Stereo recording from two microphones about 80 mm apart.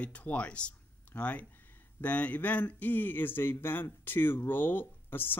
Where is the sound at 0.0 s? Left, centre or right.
Centre.